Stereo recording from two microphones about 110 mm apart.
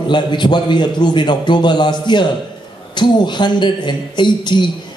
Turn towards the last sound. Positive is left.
turn(degrees=45)  # may be behind; listen again after turning